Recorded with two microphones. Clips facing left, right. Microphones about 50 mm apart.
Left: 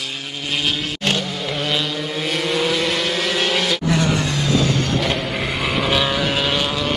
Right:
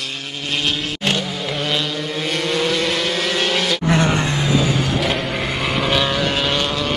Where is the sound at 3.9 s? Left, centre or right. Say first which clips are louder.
Right 3 dB; right.